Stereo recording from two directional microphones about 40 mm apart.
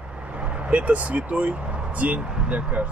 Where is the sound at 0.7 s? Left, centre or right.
Right.